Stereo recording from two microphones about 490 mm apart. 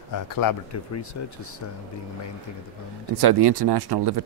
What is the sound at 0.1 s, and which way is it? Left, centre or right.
Speech, left.